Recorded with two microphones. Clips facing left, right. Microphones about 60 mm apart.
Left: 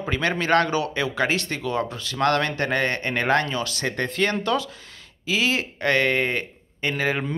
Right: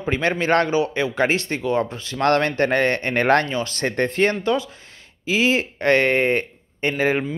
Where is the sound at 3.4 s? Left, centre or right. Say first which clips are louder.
Right 3 dB; right.